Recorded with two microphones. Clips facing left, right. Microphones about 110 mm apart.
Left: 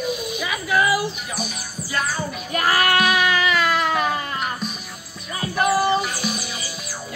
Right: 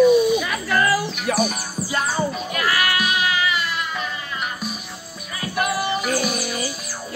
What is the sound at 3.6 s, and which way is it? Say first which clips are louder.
Music: left 7 dB; 90° left.